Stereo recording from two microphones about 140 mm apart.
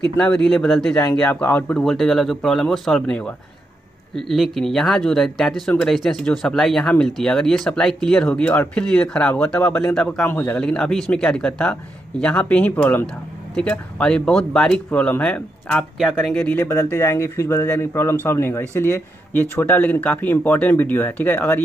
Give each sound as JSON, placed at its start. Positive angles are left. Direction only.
{"t": 0.2, "sound": "speech", "side_deg": 5}